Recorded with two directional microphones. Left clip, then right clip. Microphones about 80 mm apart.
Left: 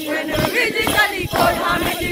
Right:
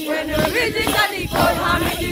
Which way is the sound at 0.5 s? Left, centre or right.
Right.